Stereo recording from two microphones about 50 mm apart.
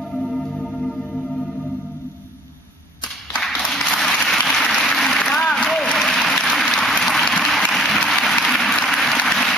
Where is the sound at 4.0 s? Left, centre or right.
Centre.